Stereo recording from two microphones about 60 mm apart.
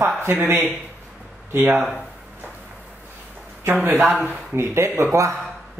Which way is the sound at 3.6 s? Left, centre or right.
Right.